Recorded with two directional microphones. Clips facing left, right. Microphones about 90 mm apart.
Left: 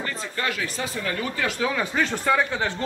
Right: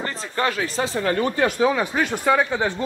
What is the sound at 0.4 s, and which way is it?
Speech, 35° right (ahead or behind).